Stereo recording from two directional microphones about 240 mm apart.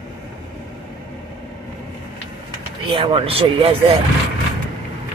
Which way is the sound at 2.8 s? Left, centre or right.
Right.